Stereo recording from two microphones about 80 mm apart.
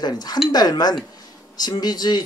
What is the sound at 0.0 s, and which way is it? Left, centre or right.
Speech, left.